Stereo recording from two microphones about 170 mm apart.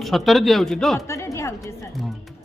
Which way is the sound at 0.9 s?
20° left (ahead or behind).